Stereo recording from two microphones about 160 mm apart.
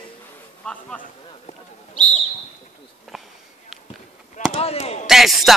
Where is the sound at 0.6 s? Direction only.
5° left (ahead or behind).